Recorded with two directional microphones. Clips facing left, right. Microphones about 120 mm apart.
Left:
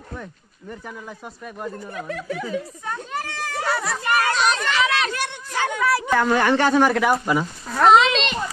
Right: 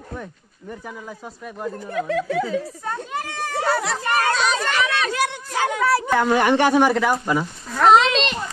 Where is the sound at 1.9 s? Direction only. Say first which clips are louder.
Right 9 dB; 90° right.